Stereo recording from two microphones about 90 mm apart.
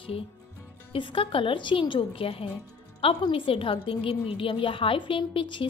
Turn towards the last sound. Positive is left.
turn(degrees=70)  # may be behind; listen again after turning